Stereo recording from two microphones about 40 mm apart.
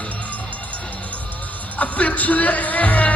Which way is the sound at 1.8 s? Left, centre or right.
Left.